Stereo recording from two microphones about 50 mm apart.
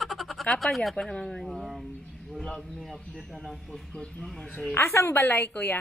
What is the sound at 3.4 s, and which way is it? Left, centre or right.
Speech, centre.